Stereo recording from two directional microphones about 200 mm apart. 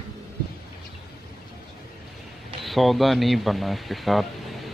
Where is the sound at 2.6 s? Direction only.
Centre (ahead or behind).